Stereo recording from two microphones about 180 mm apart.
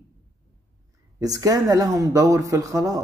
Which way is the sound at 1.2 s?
20° right (ahead or behind).